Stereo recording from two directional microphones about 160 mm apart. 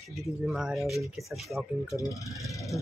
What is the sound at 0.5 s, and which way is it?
Speech, 5° right (ahead or behind).